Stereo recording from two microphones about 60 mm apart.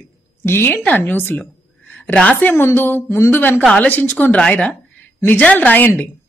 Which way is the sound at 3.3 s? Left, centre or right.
Left.